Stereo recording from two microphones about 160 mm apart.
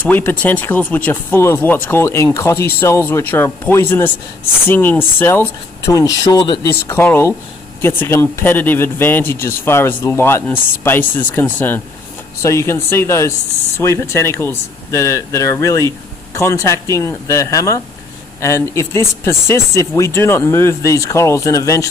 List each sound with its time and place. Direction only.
0.0 s speech: 10° left (ahead or behind); by 6.7 s 25° left (ahead or behind)
6.7 s speech: 15° left (ahead or behind)